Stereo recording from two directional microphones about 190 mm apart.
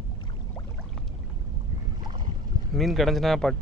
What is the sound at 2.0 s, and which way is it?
Boat, 25° right (ahead or behind).